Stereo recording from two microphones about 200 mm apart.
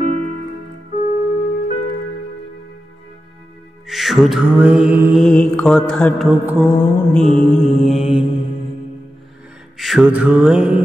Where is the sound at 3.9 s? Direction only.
Centre (ahead or behind).